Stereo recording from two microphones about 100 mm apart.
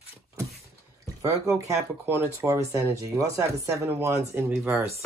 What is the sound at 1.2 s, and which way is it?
Speech, 30° right (ahead or behind).